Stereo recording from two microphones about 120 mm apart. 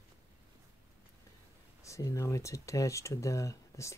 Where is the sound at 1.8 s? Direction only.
25° left (ahead or behind).